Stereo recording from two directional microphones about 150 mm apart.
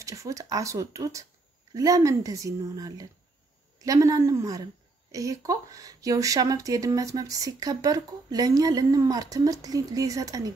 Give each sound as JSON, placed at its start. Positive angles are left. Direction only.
{"t": 0.0, "sound": "speech", "side_deg": -20}